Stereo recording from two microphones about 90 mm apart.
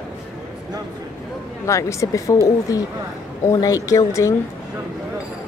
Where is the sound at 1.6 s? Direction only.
35° left (ahead or behind).